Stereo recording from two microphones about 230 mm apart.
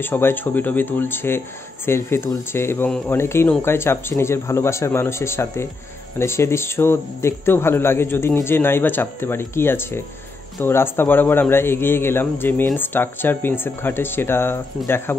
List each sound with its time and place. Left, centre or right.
0.0 s a man's voice: centre